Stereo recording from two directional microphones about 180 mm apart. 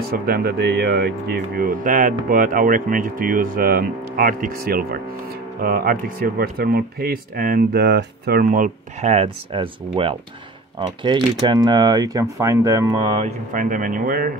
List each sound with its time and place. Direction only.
0.0 s speech: 60° right (ahead or behind); by 13.3 s 30° right (ahead or behind)
13.5 s speech: 50° right (ahead or behind)